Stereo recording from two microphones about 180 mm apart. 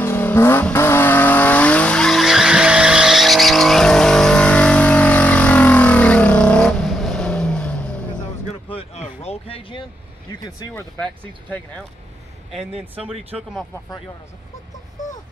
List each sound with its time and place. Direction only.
0.0 s vehicle: 10° left (ahead or behind)
8.6 s a sound: 35° left (ahead or behind)
10.7 s speech: 10° left (ahead or behind)
12.7 s speech: 30° right (ahead or behind)